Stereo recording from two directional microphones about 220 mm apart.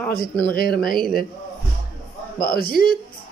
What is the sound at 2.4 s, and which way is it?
Speech, 40° left (ahead or behind).